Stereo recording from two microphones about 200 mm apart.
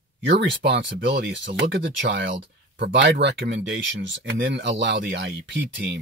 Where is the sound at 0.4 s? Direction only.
60° right (ahead or behind).